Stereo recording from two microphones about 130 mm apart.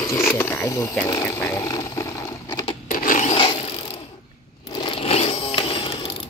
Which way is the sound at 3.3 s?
45° left (ahead or behind).